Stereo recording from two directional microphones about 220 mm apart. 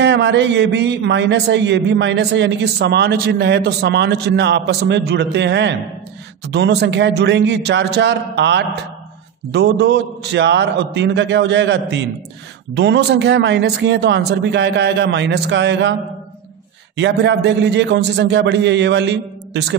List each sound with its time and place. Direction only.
0.0 s a man's voice: 55° right (ahead or behind)